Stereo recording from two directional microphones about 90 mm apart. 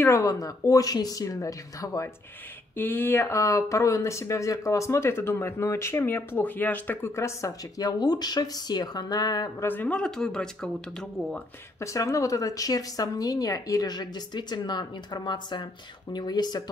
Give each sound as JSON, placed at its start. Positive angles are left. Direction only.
{"t": 0.0, "sound": "speech", "side_deg": 35}
{"t": 2.7, "sound": "speech", "side_deg": 20}
{"t": 9.6, "sound": "speech", "side_deg": 20}
{"t": 11.8, "sound": "speech", "side_deg": 35}